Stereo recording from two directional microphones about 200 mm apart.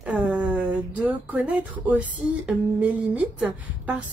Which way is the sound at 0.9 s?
5° right (ahead or behind).